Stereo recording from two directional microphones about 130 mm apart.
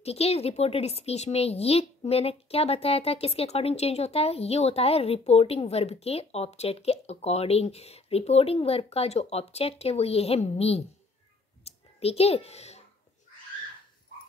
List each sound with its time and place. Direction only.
0.0 s speech: 50° left (ahead or behind)
11.6 s clicking: 50° left (ahead or behind)